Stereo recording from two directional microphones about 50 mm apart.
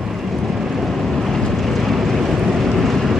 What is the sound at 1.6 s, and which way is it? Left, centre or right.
Vehicle, centre.